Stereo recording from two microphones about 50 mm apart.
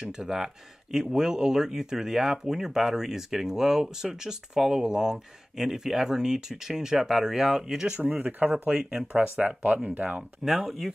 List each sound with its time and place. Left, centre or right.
0.0 s speech: centre
7.9 s speech: right